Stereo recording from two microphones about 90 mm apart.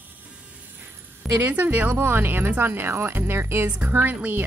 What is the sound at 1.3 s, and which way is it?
Speech, 20° right (ahead or behind).